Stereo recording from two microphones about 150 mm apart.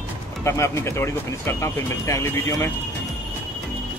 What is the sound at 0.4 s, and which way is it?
Speech, 20° left (ahead or behind).